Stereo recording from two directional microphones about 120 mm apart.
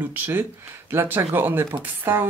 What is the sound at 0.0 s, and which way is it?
Speech, 15° right (ahead or behind).